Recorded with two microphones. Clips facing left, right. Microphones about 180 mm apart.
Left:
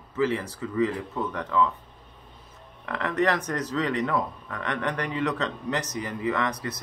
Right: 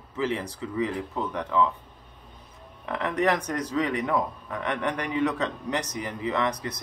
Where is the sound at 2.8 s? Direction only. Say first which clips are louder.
Even; 15° right (ahead or behind).